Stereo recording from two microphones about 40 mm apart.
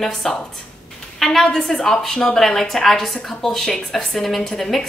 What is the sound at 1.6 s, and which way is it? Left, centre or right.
Speech, left.